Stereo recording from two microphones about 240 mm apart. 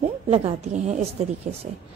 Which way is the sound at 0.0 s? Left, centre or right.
Right.